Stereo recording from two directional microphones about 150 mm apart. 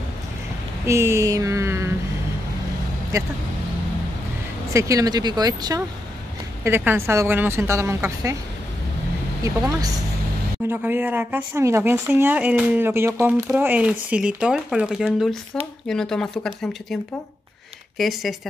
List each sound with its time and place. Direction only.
0.8 s a sound: 20° right (ahead or behind)
3.1 s speech: 20° right (ahead or behind)
4.7 s speech: 20° right (ahead or behind)
6.6 s speech: 15° right (ahead or behind)
9.4 s speech: 25° right (ahead or behind)
10.7 s speech: 10° right (ahead or behind)